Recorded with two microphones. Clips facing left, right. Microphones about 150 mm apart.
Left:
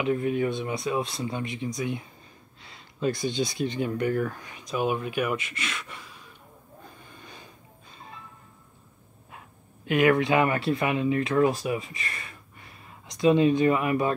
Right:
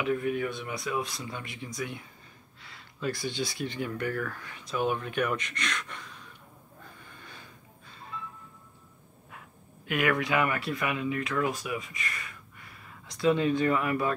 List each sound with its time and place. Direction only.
0.0 s speech: 25° left (ahead or behind); by 6.1 s 5° left (ahead or behind)
7.2 s a sound: 15° left (ahead or behind)
9.8 s speech: 25° left (ahead or behind)